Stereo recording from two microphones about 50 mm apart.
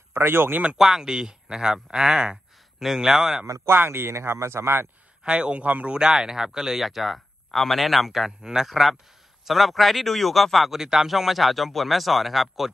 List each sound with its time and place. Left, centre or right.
0.1 s speech: right
0.7 s speech: centre
3.7 s speech: right
5.2 s a man's voice: right
5.9 s speech: centre
8.3 s speech: centre